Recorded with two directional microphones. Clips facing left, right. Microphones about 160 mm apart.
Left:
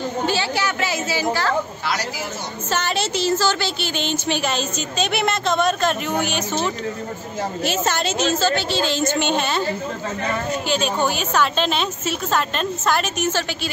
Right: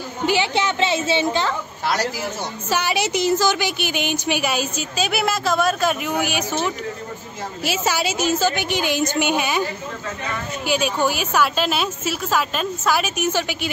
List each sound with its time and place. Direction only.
0.3 s a woman's voice: 20° right (ahead or behind)
2.7 s a woman's voice: 10° right (ahead or behind)
10.7 s a woman's voice: 10° right (ahead or behind)